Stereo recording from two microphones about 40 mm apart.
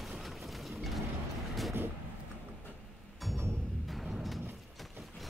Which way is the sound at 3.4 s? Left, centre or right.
Right.